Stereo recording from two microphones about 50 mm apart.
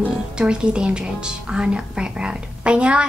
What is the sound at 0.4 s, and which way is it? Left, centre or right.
A woman's voice, centre.